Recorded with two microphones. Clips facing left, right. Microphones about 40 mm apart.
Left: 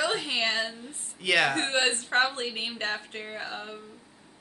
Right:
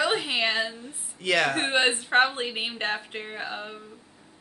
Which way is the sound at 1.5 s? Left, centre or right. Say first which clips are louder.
Right 3 dB; centre.